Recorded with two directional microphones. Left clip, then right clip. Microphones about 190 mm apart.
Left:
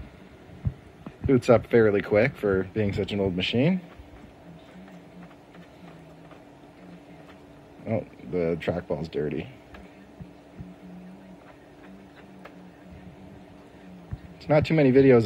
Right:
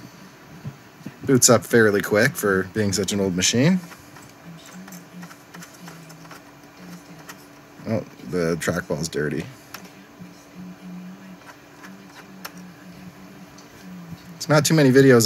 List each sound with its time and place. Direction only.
1.2 s speech: 15° right (ahead or behind)
7.8 s a sound: 25° right (ahead or behind)
14.4 s speech: 25° right (ahead or behind)